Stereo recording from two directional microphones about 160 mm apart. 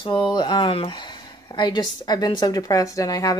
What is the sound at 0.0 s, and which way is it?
Speech, 30° left (ahead or behind).